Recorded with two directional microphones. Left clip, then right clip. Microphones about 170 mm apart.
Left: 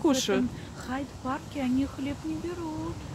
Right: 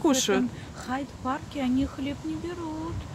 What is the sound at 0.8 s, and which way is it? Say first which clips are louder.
Speech: right 3 dB; 40° right (ahead or behind).